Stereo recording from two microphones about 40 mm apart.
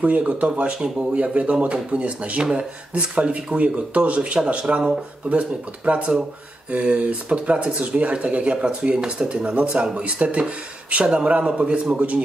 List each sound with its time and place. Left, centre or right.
0.2 s speech: right